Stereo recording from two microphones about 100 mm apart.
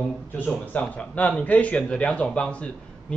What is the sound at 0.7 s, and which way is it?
Speech, 15° left (ahead or behind).